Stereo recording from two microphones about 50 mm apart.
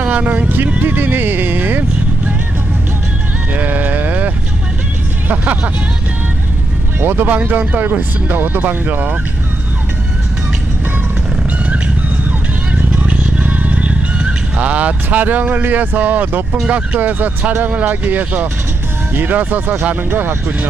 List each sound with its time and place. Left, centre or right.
0.0 s speech: right
3.5 s sheep: right
5.3 s speech: right
7.0 s speech: right
12.3 s vehicle: right
16.6 s speech: right